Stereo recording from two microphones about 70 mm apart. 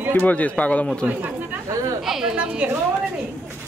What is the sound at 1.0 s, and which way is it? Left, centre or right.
Speech, right.